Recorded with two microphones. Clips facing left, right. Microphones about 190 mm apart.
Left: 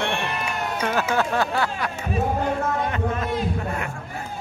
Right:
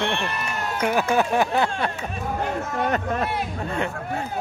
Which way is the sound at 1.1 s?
15° right (ahead or behind).